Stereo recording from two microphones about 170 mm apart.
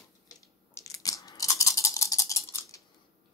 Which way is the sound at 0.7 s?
20° left (ahead or behind).